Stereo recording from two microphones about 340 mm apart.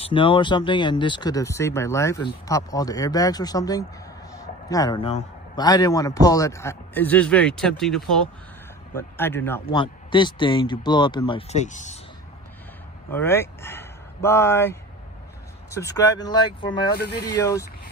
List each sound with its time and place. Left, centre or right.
0.0 s a man's voice: centre
13.1 s a man's voice: centre
16.9 s speech: left
17.3 s a man's voice: centre